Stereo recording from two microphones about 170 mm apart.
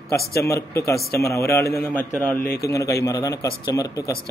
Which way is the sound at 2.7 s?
20° left (ahead or behind).